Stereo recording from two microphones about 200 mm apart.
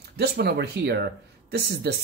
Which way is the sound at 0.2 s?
55° right (ahead or behind).